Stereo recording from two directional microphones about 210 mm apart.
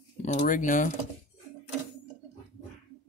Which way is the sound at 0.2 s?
35° left (ahead or behind).